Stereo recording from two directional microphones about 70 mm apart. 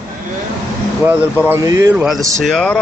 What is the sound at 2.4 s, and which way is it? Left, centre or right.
Speech, centre.